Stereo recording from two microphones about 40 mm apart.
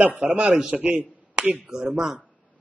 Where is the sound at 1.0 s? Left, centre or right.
Right.